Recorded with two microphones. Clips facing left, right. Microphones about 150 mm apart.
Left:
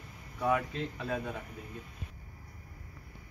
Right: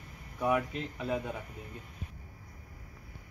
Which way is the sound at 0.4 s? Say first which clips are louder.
Even; 15° right (ahead or behind).